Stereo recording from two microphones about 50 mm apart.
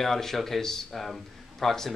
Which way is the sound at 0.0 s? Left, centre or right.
Centre.